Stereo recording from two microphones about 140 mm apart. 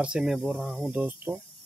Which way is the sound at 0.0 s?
5° right (ahead or behind).